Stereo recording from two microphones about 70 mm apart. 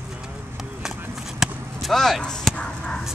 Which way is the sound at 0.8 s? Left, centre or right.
Centre.